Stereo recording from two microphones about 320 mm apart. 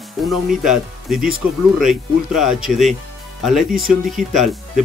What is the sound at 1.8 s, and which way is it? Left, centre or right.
Speech, centre.